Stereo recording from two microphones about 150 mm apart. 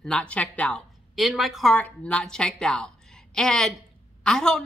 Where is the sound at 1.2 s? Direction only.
Centre (ahead or behind).